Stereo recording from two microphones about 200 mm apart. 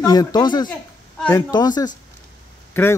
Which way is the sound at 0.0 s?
20° left (ahead or behind).